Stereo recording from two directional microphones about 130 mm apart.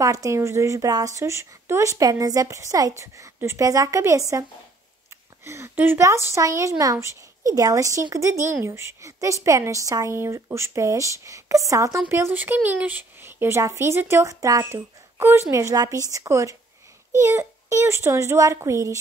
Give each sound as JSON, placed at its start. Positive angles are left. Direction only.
{"t": 0.0, "sound": "a woman's voice", "side_deg": -25}